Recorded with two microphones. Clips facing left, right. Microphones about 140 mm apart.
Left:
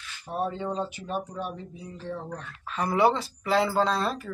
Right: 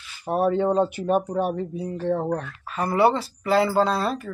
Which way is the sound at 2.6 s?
5° right (ahead or behind).